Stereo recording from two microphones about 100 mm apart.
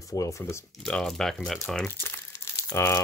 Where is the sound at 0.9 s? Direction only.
5° left (ahead or behind).